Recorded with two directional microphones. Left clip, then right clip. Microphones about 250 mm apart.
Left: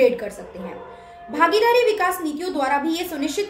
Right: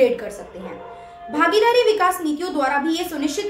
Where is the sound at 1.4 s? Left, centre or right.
Centre.